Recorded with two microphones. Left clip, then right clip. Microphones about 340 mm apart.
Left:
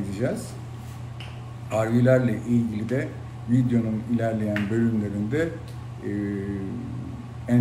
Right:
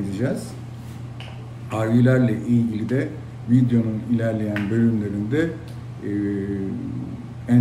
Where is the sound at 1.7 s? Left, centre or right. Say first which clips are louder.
Even; centre.